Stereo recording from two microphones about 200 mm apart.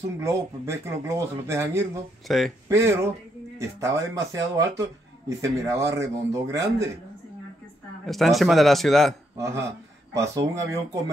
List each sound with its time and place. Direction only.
0.2 s a man's voice: 15° right (ahead or behind)
2.2 s speech: centre (ahead or behind)
2.7 s a man's voice: 15° right (ahead or behind)
8.1 s speech: centre (ahead or behind)
9.4 s a man's voice: 15° right (ahead or behind)